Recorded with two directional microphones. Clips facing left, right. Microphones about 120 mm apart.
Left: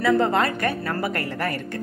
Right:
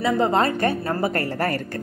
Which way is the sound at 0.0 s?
25° right (ahead or behind).